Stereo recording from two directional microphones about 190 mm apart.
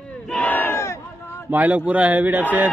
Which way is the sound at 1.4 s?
10° right (ahead or behind).